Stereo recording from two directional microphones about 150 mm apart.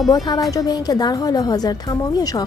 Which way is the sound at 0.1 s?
25° left (ahead or behind).